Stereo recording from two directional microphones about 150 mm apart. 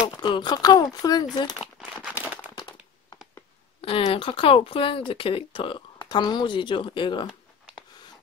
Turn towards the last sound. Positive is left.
turn(degrees=35)  # may be behind; listen again after turning